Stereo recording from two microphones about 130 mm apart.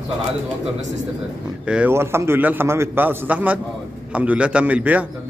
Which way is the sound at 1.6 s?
10° right (ahead or behind).